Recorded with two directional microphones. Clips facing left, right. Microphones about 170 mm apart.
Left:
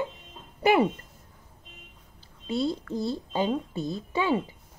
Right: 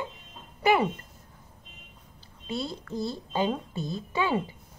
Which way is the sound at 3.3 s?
20° left (ahead or behind).